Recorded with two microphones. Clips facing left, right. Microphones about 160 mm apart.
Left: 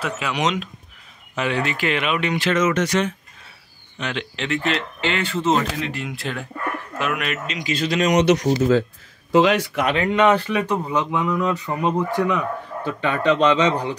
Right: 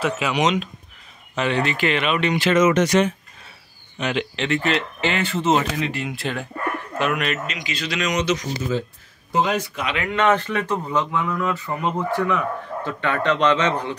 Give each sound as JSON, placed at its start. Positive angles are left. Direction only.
{"t": 0.0, "sound": "speech", "side_deg": -5}
{"t": 4.0, "sound": "speech", "side_deg": -10}
{"t": 7.5, "sound": "speech", "side_deg": 45}
{"t": 8.2, "sound": "speech", "side_deg": 65}
{"t": 9.3, "sound": "speech", "side_deg": 85}
{"t": 10.1, "sound": "speech", "side_deg": 10}